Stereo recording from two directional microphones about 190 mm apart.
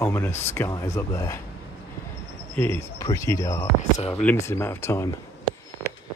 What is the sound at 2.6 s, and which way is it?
Speech, 10° left (ahead or behind).